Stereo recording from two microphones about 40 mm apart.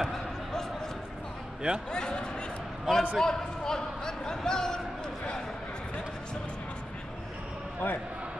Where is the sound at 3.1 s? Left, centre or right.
Centre.